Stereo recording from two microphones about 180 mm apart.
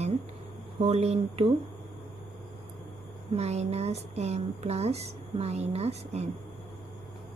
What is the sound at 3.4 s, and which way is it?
Speech, 35° right (ahead or behind).